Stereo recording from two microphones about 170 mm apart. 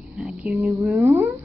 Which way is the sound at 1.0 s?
15° right (ahead or behind).